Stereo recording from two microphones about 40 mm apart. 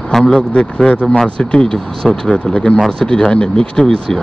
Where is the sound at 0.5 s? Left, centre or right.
Left.